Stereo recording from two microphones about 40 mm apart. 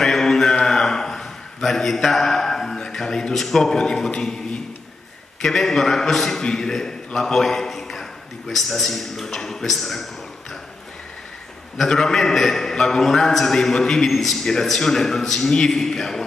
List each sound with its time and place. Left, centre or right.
0.0 s mantra: centre
0.6 s a sound: centre
3.3 s a man's voice: centre
5.4 s a man's voice: centre
11.7 s a man's voice: centre